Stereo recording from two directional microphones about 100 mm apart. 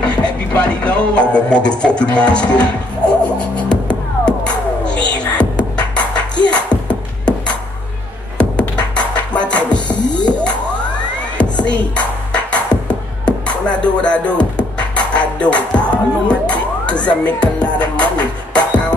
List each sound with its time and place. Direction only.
0.0 s speech: 10° left (ahead or behind)
3.3 s music: 10° left (ahead or behind)
9.9 s music: 45° left (ahead or behind)
11.4 s music: 10° left (ahead or behind)
11.7 s dishes: 10° left (ahead or behind)
13.2 s music: 10° left (ahead or behind)